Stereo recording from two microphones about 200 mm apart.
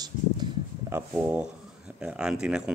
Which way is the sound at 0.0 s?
15° right (ahead or behind).